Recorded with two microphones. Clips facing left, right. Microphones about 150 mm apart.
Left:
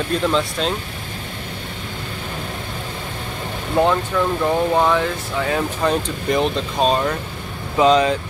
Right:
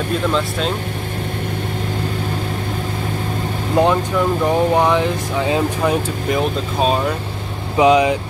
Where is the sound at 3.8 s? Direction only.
15° right (ahead or behind).